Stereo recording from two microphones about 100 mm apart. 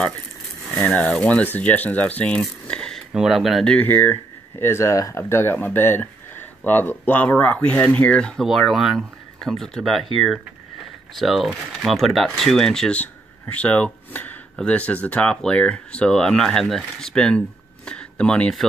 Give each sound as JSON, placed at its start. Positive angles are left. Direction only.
{"t": 0.8, "sound": "speech", "side_deg": 10}
{"t": 3.1, "sound": "speech", "side_deg": -5}
{"t": 8.5, "sound": "speech", "side_deg": 0}